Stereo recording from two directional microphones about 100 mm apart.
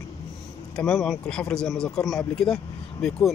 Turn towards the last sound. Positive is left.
turn(degrees=5)  # may be behind; listen again after turning